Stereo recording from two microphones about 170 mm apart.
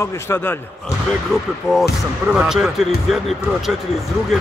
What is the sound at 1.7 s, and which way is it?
Speech, centre (ahead or behind).